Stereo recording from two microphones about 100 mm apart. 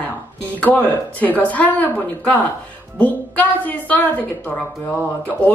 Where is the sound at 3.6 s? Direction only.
15° left (ahead or behind).